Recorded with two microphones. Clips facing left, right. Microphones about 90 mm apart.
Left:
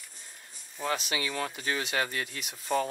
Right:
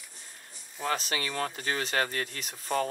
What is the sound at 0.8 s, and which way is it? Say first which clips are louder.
Speech: even; 40° right (ahead or behind).